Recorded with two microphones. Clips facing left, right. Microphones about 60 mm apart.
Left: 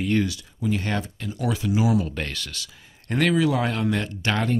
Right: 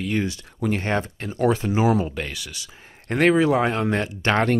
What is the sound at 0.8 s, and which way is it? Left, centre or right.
Speech, right.